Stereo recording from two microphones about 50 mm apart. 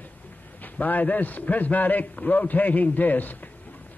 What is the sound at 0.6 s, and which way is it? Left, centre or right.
A man's voice, left.